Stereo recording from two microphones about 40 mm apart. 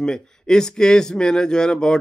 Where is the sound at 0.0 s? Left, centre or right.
Centre.